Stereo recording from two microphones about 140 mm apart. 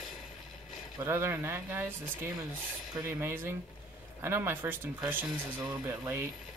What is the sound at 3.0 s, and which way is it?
Speech, 15° right (ahead or behind).